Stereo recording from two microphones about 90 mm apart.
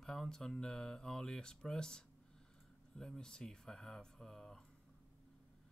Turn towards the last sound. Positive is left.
turn(degrees=5)  # may be behind; listen again after turning